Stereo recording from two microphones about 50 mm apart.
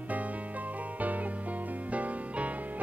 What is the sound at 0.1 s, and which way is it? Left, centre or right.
Music, right.